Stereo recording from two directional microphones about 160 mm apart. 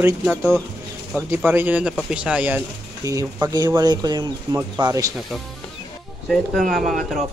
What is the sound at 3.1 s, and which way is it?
Speech, 20° right (ahead or behind).